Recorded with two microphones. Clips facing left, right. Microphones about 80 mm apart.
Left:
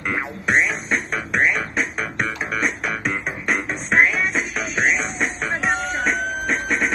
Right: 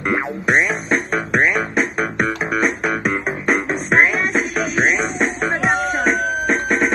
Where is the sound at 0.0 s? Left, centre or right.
Centre.